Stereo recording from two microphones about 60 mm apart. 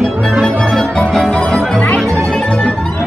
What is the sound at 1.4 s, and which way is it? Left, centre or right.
Speech, centre.